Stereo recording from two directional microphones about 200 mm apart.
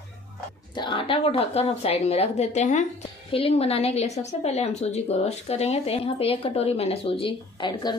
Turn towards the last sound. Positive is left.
turn(degrees=20)  # may be behind; listen again after turning